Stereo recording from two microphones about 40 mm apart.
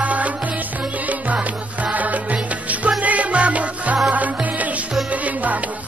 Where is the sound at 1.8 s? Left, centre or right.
Right.